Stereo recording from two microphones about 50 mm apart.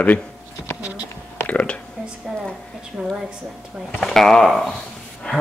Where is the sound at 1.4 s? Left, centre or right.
Left.